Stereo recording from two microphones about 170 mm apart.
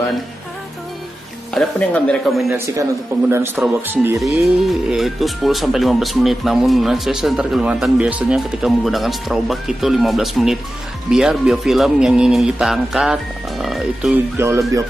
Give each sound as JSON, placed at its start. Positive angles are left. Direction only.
{"t": 1.5, "sound": "speech", "side_deg": 5}
{"t": 2.5, "sound": "a man's voice", "side_deg": -20}
{"t": 4.2, "sound": "speech", "side_deg": 0}